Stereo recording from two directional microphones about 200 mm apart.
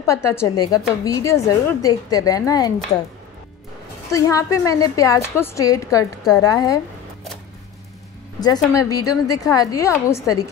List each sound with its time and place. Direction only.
0.0 s a woman's voice: 15° left (ahead or behind)
4.1 s a woman's voice: 15° left (ahead or behind)
8.7 s a woman's voice: 15° left (ahead or behind)